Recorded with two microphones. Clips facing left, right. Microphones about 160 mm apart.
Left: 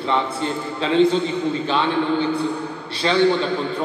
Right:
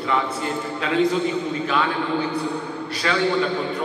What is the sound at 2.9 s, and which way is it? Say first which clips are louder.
Speech: left 4 dB; 30° left (ahead or behind).